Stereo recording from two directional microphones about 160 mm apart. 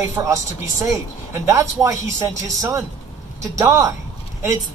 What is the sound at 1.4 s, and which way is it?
A man's voice, 20° right (ahead or behind).